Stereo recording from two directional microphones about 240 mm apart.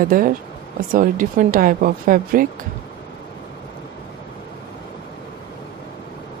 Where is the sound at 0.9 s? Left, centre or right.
Right.